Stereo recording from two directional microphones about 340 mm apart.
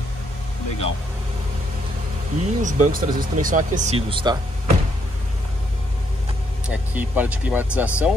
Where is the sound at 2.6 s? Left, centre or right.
Right.